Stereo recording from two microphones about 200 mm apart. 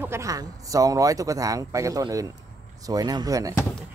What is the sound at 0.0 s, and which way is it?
Speech, 15° right (ahead or behind).